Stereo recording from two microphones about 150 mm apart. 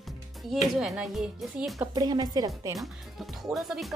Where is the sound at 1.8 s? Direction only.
25° right (ahead or behind).